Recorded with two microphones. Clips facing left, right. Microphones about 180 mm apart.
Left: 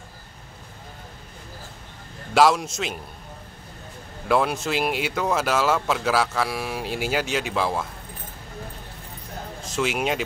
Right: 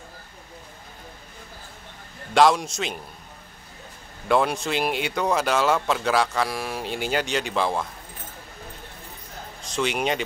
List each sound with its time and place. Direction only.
2.3 s speech: 5° left (ahead or behind)
4.3 s speech: centre (ahead or behind)
9.6 s a man's voice: 5° left (ahead or behind)